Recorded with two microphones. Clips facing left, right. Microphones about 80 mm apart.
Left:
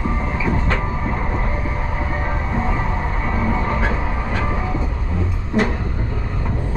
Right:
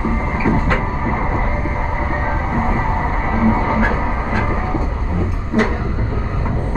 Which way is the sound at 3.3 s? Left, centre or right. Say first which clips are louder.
Right 6 dB; right.